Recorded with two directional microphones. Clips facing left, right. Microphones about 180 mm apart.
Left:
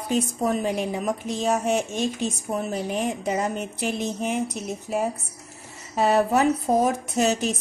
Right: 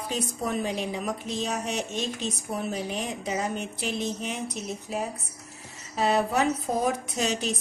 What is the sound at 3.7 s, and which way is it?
Speech, 45° left (ahead or behind).